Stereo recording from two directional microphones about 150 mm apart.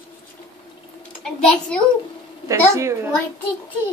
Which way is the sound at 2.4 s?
20° right (ahead or behind).